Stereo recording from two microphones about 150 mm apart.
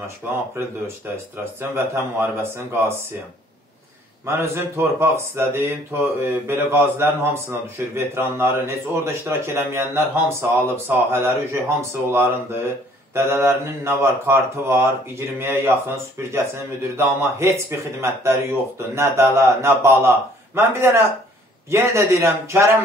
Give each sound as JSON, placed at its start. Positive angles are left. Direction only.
{"t": 0.2, "sound": "a man's voice", "side_deg": -15}
{"t": 4.3, "sound": "a man's voice", "side_deg": -15}